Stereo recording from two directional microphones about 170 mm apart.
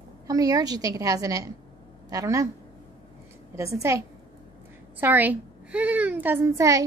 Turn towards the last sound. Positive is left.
turn(degrees=-20)  # may be behind; listen again after turning